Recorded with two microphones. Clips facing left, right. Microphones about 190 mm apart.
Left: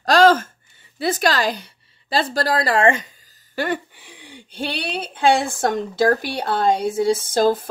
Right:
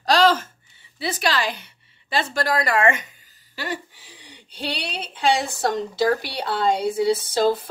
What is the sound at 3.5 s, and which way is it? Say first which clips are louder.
A woman's voice: left 7 dB; 55° left (ahead or behind).